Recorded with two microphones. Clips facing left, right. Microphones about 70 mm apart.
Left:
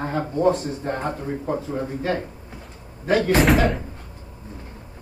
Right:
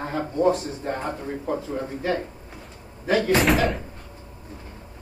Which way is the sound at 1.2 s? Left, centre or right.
Centre.